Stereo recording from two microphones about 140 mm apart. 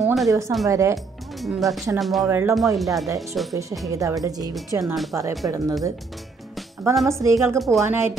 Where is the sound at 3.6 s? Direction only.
20° right (ahead or behind).